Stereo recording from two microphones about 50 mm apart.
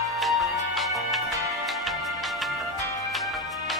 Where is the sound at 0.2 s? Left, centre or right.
Centre.